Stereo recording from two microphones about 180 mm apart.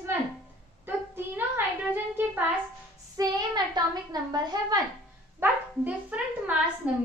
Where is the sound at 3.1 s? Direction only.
20° right (ahead or behind).